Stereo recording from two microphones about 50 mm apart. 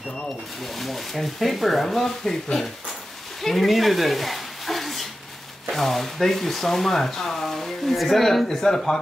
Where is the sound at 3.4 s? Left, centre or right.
Centre.